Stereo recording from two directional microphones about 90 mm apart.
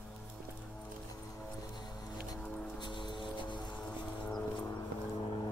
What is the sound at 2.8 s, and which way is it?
Vehicle, 60° left (ahead or behind).